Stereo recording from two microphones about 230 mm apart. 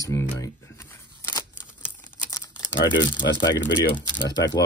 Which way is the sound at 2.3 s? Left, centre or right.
Centre.